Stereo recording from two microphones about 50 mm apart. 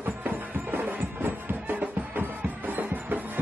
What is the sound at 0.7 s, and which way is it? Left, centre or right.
Music, right.